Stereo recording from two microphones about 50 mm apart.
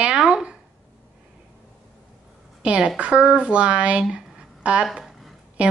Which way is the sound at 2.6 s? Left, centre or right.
Centre.